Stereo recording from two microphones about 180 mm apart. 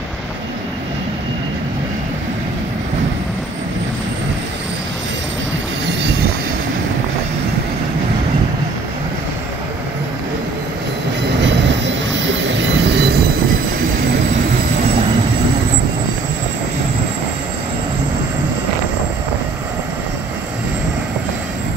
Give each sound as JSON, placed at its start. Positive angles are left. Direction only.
{"t": 11.4, "sound": "train", "side_deg": -90}